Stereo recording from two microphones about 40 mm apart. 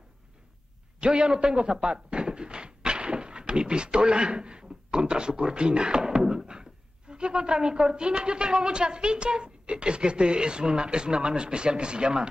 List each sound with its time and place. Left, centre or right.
1.0 s speech: right